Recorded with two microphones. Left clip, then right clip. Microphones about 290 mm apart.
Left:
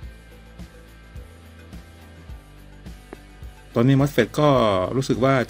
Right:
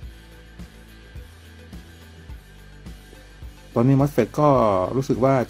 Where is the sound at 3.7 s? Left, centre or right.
Centre.